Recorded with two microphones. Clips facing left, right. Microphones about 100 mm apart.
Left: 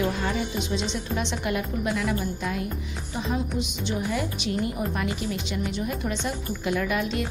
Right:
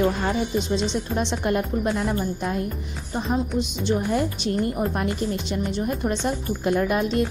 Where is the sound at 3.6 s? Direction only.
35° right (ahead or behind).